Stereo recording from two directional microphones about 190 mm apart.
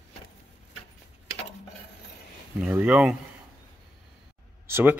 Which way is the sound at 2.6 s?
5° right (ahead or behind).